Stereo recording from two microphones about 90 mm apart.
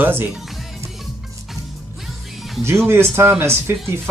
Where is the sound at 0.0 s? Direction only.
20° right (ahead or behind).